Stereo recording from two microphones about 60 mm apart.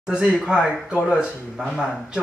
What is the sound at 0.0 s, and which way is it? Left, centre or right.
Speech, centre.